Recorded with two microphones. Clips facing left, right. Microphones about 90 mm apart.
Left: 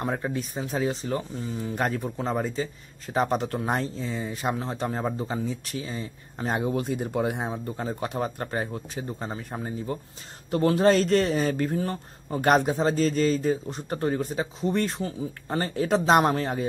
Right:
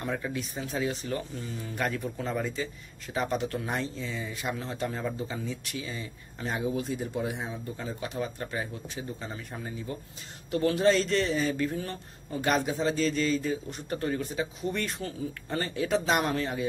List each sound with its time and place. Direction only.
0.0 s speech: 35° left (ahead or behind)
6.5 s speech: 55° left (ahead or behind); by 12.0 s 35° left (ahead or behind)
12.3 s speech: 50° left (ahead or behind); by 15.6 s 30° left (ahead or behind)
15.6 s speech: 40° left (ahead or behind)